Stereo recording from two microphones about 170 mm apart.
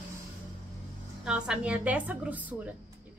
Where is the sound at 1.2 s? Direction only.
5° right (ahead or behind).